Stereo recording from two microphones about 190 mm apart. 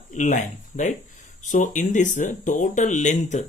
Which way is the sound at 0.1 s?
40° left (ahead or behind).